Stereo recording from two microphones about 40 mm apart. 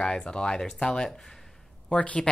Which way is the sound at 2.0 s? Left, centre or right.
Left.